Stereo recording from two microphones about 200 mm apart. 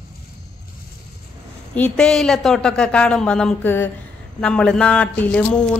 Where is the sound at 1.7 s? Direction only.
5° left (ahead or behind).